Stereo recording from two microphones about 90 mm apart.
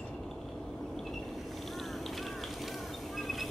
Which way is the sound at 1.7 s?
Centre (ahead or behind).